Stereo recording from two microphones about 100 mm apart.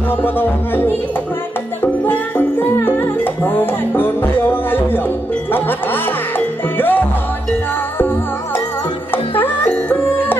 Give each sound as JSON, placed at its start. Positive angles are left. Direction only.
{"t": 0.1, "sound": "music", "side_deg": 20}
{"t": 5.5, "sound": "speech", "side_deg": 20}
{"t": 8.0, "sound": "music", "side_deg": 20}